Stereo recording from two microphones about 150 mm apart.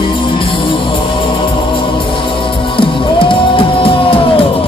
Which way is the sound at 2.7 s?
35° left (ahead or behind).